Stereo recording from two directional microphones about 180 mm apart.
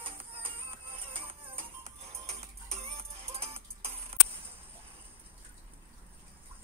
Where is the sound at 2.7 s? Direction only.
35° right (ahead or behind).